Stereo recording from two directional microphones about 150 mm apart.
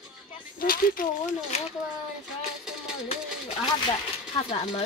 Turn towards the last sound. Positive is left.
turn(degrees=35)  # may be behind; listen again after turning